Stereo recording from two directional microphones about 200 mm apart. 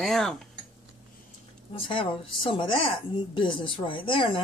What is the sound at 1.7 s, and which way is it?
Speech, 25° left (ahead or behind).